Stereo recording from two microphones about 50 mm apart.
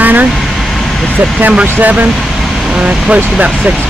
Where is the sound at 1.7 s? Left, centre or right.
Right.